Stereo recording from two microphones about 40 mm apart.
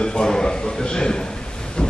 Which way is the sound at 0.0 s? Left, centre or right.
Centre.